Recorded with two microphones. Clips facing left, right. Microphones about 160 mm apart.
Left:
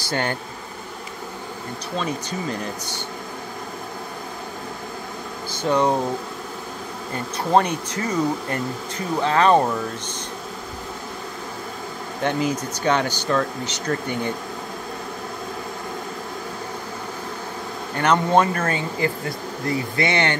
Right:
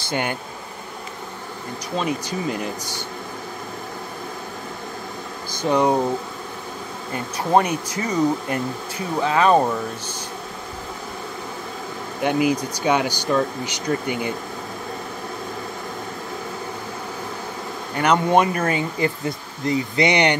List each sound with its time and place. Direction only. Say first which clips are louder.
0.1 s speech: even; 15° right (ahead or behind)
2.0 s speech: right 2 dB; 10° right (ahead or behind)
5.5 s speech: right 1 dB; 10° right (ahead or behind)
7.5 s speech: right 1 dB; 10° right (ahead or behind)
12.2 s speech: right 3 dB; 10° right (ahead or behind)
17.9 s speech: right 1 dB; 15° right (ahead or behind)